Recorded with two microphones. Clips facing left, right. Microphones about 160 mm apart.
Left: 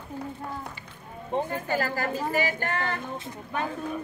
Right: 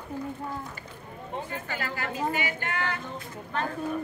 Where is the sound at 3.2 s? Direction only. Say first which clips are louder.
Left 1 dB; 15° left (ahead or behind).